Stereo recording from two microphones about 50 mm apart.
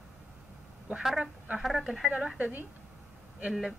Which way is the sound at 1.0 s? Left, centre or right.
Centre.